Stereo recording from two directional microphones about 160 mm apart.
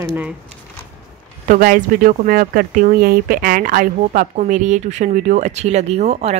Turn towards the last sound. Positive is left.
turn(degrees=-45)  # may be behind; listen again after turning